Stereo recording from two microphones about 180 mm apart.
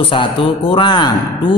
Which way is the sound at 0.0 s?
30° left (ahead or behind).